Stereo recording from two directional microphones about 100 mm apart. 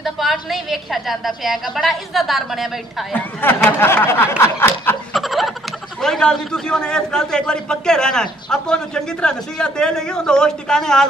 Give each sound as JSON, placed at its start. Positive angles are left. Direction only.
{"t": 0.0, "sound": "a woman's voice", "side_deg": 0}
{"t": 3.1, "sound": "speech", "side_deg": 20}
{"t": 4.4, "sound": "snicker", "side_deg": 25}
{"t": 5.1, "sound": "snicker", "side_deg": 0}
{"t": 5.9, "sound": "a man's voice", "side_deg": 5}